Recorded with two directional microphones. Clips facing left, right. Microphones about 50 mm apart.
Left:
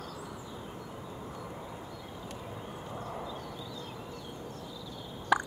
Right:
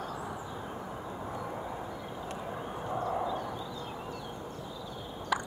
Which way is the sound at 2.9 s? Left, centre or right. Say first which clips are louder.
Right 9 dB; right.